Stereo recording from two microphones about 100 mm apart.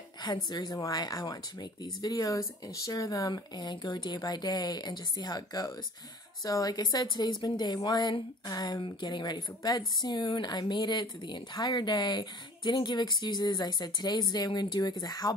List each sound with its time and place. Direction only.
0.5 s a woman's voice: 45° left (ahead or behind)